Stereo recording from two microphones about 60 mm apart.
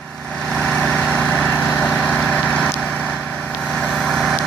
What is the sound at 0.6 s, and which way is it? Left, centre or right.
Vehicle, centre.